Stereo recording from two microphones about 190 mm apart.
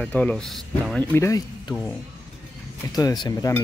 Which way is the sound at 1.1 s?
15° left (ahead or behind).